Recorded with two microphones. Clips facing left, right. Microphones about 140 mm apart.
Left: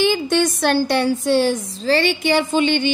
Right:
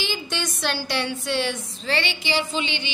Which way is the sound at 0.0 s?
55° left (ahead or behind).